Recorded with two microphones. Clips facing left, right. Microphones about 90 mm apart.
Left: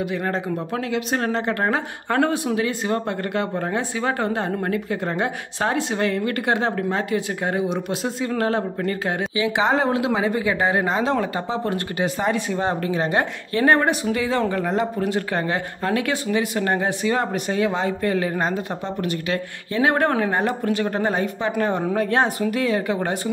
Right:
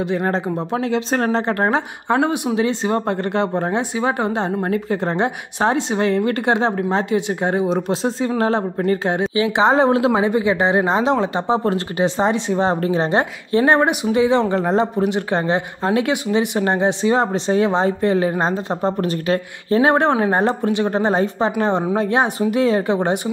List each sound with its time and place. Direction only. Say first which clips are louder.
0.0 s speech: right 4 dB; 30° right (ahead or behind)
4.0 s speech: right 2 dB; 20° right (ahead or behind)